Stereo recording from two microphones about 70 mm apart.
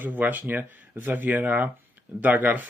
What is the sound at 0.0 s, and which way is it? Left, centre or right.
Speech, right.